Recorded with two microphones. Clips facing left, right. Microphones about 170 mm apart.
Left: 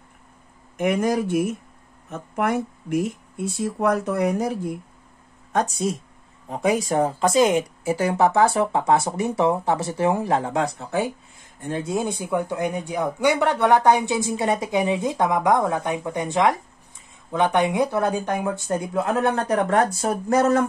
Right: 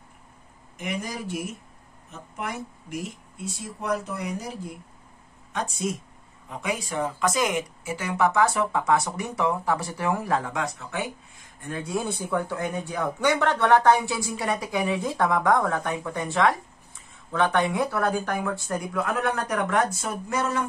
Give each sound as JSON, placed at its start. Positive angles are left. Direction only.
{"t": 0.7, "sound": "speech", "side_deg": 55}
{"t": 5.5, "sound": "speech", "side_deg": 40}